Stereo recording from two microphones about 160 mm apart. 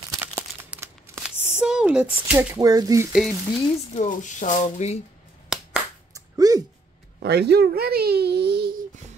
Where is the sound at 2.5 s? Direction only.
25° right (ahead or behind).